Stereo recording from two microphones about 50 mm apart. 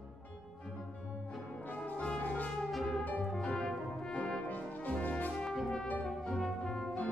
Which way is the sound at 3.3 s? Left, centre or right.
Centre.